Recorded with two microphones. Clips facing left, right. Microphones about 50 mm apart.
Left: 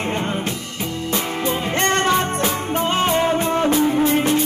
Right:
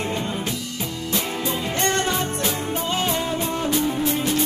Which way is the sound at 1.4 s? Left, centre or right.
Left.